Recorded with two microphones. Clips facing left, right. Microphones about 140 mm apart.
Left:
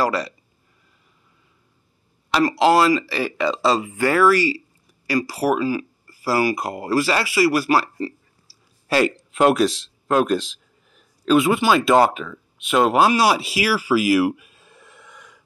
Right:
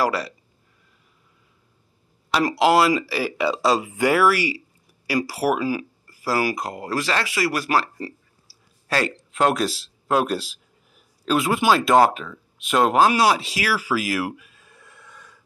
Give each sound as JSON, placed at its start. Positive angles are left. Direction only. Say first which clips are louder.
{"t": 0.0, "sound": "speech", "louder": "left 1 dB", "side_deg": -5}
{"t": 2.4, "sound": "speech", "louder": "left 2 dB", "side_deg": -10}
{"t": 6.0, "sound": "speech", "louder": "left 3 dB", "side_deg": 0}
{"t": 8.5, "sound": "a sound", "louder": "even", "side_deg": 0}
{"t": 8.8, "sound": "speech", "louder": "left 5 dB", "side_deg": 10}
{"t": 14.6, "sound": "a sound", "louder": "left 2 dB", "side_deg": 20}